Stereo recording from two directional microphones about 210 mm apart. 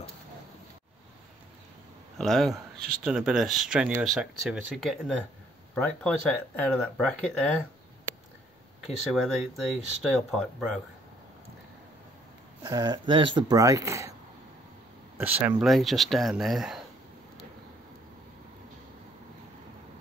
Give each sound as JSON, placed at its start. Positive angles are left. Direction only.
{"t": 2.1, "sound": "speech", "side_deg": 0}
{"t": 8.8, "sound": "speech", "side_deg": 0}
{"t": 12.6, "sound": "speech", "side_deg": -20}
{"t": 15.1, "sound": "speech", "side_deg": -10}